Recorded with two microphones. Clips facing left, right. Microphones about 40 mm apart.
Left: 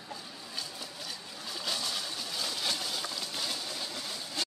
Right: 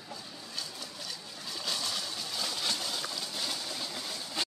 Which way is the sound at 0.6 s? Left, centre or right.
Centre.